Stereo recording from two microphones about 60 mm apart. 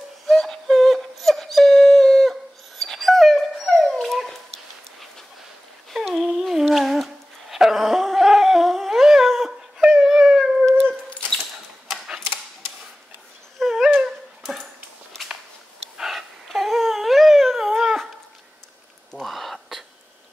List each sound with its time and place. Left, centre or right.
0.3 s a sound: centre
2.8 s dog: centre
5.9 s humming: centre
7.5 s dog: centre
13.6 s dog: centre
16.0 s babbling: centre
19.1 s a sound: centre